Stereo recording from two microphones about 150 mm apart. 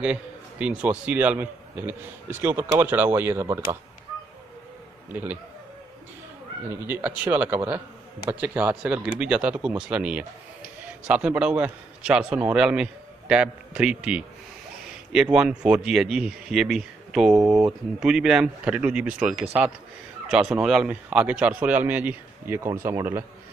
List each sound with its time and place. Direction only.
0.0 s speech: 10° right (ahead or behind)
5.1 s speech: 10° right (ahead or behind)
6.7 s speech: 15° right (ahead or behind)
17.5 s speech: 25° right (ahead or behind)
18.0 s speech: 5° right (ahead or behind)